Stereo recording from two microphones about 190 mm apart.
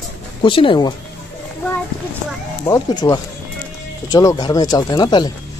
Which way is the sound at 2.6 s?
20° left (ahead or behind).